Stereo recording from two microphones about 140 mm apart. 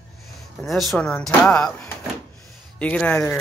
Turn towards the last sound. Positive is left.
turn(degrees=10)  # may be behind; listen again after turning